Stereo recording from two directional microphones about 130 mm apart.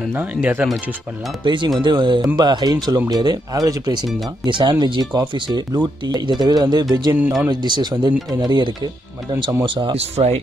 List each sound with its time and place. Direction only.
0.1 s speech: 15° right (ahead or behind)
1.4 s speech: 40° right (ahead or behind)
9.9 s speech: 55° right (ahead or behind)